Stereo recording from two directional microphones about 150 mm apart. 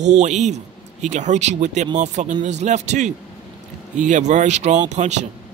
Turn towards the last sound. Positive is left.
turn(degrees=-50)  # may be behind; listen again after turning